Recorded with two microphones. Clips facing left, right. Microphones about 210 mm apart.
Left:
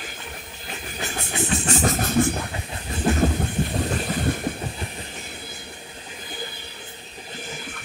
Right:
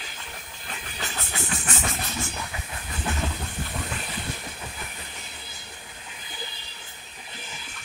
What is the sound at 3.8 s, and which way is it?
Boat, 45° left (ahead or behind).